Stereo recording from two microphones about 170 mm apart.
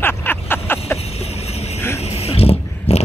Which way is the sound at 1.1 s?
40° left (ahead or behind).